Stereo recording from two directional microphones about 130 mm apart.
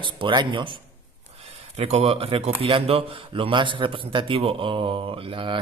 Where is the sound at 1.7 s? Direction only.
50° right (ahead or behind).